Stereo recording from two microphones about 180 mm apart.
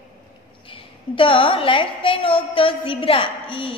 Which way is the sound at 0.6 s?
30° left (ahead or behind).